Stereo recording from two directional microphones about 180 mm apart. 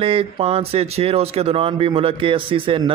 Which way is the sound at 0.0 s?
30° right (ahead or behind).